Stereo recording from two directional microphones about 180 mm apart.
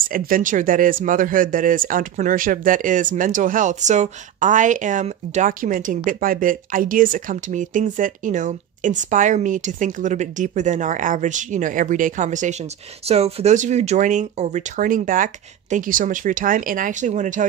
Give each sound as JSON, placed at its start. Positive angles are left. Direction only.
{"t": 0.0, "sound": "speech", "side_deg": -50}